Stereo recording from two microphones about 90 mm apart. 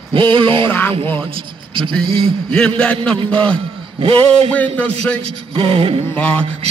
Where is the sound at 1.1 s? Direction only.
80° right.